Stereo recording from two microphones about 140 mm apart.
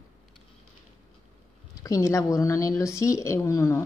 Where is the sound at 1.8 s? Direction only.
20° left (ahead or behind).